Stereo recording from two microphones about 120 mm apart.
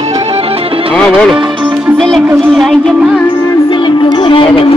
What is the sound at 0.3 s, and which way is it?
Music, 55° right (ahead or behind).